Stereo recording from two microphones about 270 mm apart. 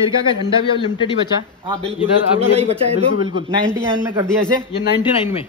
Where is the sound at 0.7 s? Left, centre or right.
Centre.